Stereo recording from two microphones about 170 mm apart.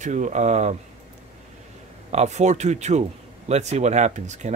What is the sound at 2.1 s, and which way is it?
Speech, 40° right (ahead or behind).